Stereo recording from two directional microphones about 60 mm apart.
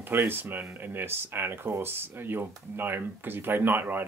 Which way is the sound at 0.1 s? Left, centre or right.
Right.